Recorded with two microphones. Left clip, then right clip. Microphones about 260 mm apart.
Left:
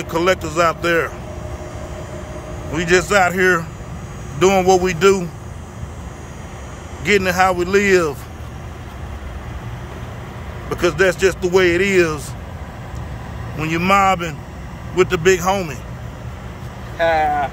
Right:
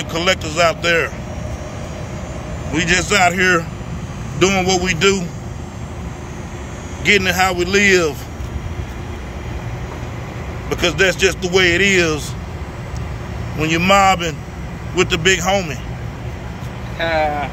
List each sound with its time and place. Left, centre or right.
0.0 s speech: centre
2.7 s speech: centre
7.1 s speech: centre
10.7 s speech: centre
13.6 s a man's voice: centre
17.0 s speech: left